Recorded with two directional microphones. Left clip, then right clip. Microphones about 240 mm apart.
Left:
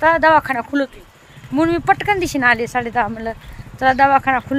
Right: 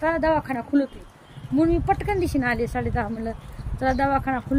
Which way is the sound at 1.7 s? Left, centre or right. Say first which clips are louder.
Left 7 dB; left.